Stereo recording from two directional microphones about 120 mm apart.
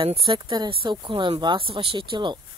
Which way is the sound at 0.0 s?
45° right (ahead or behind).